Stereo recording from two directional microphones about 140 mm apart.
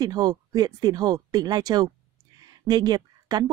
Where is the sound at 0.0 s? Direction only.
30° right (ahead or behind).